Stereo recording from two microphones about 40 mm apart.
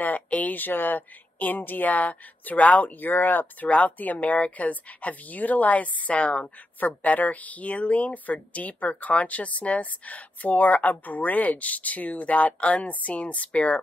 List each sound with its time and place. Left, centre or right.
0.3 s speech: left
3.6 s speech: left
7.0 s speech: left